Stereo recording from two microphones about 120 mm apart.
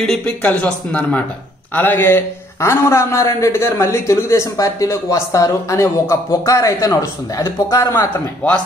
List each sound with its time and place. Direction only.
0.0 s a man's voice: 5° left (ahead or behind)